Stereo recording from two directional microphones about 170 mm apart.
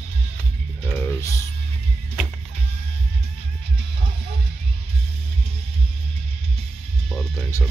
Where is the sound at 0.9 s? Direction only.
10° left (ahead or behind).